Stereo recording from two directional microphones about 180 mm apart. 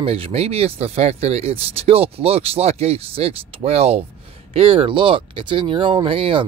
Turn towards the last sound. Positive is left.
turn(degrees=-30)  # may be behind; listen again after turning